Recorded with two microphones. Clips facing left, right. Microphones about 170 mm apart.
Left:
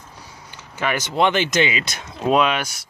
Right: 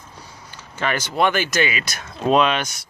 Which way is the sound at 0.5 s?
15° left (ahead or behind).